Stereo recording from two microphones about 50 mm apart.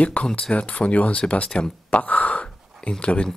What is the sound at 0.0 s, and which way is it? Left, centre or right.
Speech, left.